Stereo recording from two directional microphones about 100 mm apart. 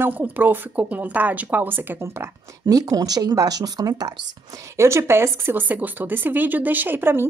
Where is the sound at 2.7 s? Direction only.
40° right (ahead or behind).